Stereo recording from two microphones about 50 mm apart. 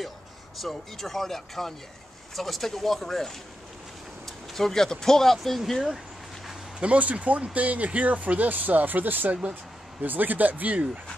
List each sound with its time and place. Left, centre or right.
0.6 s speech: centre
6.8 s speech: right